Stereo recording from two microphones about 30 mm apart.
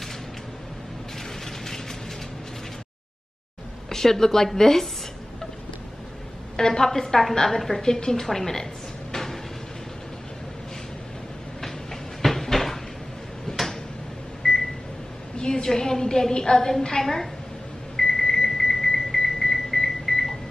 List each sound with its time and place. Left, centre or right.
1.4 s a sound: centre
3.9 s a woman's voice: centre
6.5 s a woman's voice: left
7.8 s a woman's voice: centre
9.1 s a sound: centre
11.6 s a sound: centre
13.5 s drawer open or close: left
14.4 s microwave oven: centre
15.3 s a woman's voice: left
17.9 s alarm clock: centre